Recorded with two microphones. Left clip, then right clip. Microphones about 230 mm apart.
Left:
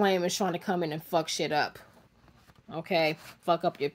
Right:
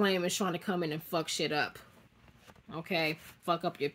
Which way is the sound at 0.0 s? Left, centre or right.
Centre.